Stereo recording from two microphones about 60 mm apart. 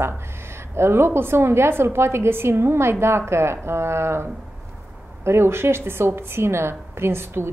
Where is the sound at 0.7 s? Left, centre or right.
Right.